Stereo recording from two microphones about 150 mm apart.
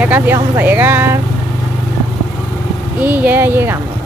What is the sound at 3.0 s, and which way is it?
Speech, 10° right (ahead or behind).